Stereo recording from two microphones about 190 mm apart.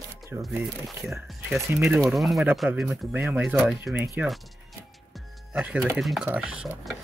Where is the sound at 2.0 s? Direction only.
Centre (ahead or behind).